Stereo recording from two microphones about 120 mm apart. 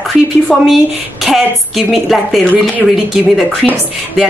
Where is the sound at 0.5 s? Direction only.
Centre (ahead or behind).